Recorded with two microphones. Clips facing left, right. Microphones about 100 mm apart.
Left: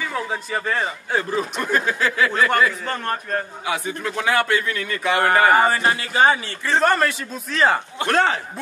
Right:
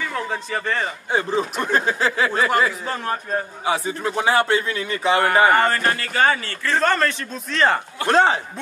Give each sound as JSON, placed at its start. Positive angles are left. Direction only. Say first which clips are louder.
{"t": 0.0, "sound": "a man's voice", "louder": "even", "side_deg": 5}
{"t": 1.6, "sound": "a man's voice", "louder": "even", "side_deg": -30}
{"t": 2.8, "sound": "a man's voice", "louder": "even", "side_deg": -5}
{"t": 3.6, "sound": "a man's voice", "louder": "right 3 dB", "side_deg": -30}
{"t": 5.5, "sound": "a man's voice", "louder": "left 1 dB", "side_deg": 10}
{"t": 8.1, "sound": "a man's voice", "louder": "right 3 dB", "side_deg": -20}